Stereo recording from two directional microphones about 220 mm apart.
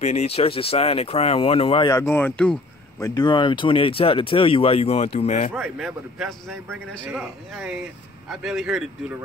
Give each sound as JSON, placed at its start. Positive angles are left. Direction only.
{"t": 0.0, "sound": "speech", "side_deg": 30}
{"t": 1.9, "sound": "speech", "side_deg": 10}
{"t": 3.2, "sound": "speech", "side_deg": 20}
{"t": 5.5, "sound": "a man's voice", "side_deg": 0}